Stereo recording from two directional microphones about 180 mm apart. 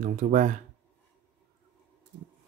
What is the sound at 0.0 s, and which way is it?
Speech, 45° right (ahead or behind).